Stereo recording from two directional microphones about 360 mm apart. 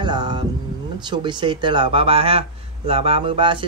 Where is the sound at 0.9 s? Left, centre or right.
Centre.